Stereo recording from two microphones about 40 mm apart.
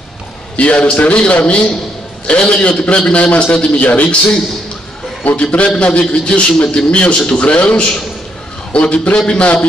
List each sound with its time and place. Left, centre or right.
0.6 s a man's voice: left
5.2 s a man's voice: left